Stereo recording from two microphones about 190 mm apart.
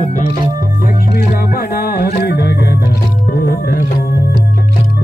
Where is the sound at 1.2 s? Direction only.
55° left (ahead or behind).